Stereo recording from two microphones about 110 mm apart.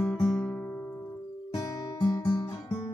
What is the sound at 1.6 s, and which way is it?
Guitar, 30° left (ahead or behind).